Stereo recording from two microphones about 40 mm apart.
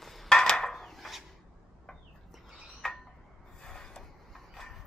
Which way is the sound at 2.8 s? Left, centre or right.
Centre.